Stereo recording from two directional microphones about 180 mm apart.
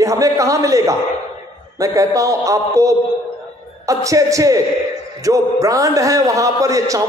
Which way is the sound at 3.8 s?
20° right (ahead or behind).